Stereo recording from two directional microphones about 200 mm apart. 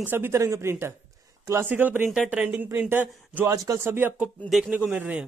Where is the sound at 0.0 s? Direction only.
10° right (ahead or behind).